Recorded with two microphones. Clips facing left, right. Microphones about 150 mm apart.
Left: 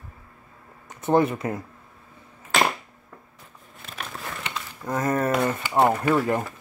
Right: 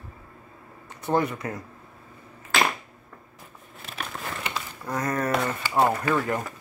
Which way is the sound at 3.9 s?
5° right (ahead or behind).